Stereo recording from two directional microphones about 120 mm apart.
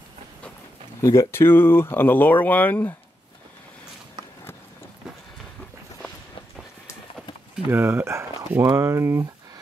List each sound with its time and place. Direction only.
1.3 s speech: 20° left (ahead or behind)
7.6 s speech: 20° right (ahead or behind)